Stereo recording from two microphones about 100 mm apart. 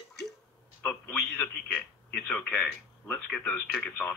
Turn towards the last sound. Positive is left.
turn(degrees=10)  # may be behind; listen again after turning